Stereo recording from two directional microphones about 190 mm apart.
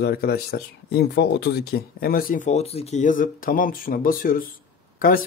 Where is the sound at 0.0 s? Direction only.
55° left (ahead or behind).